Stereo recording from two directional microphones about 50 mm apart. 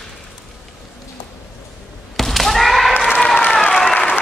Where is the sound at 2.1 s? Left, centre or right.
Centre.